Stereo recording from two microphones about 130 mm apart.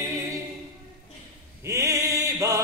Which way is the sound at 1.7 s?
25° right (ahead or behind).